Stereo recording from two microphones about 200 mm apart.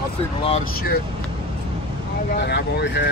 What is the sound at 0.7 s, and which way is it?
Speech, 50° left (ahead or behind).